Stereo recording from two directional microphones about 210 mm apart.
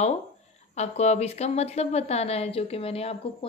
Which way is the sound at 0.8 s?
30° left (ahead or behind).